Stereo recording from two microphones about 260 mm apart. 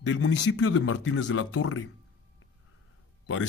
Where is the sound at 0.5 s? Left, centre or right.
Left.